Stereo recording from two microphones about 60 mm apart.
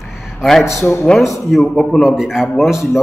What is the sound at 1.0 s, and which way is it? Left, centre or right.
A man's voice, centre.